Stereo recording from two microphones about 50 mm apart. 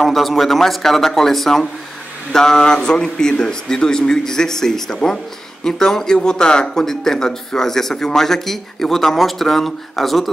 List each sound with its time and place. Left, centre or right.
0.0 s speech: centre